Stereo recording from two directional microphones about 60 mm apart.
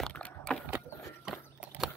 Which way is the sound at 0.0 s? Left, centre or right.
Centre.